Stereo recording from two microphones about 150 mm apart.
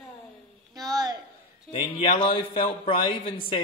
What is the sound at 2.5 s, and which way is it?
Speech, 35° left (ahead or behind).